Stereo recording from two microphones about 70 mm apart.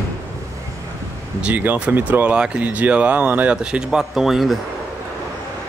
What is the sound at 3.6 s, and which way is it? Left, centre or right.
Speech, centre.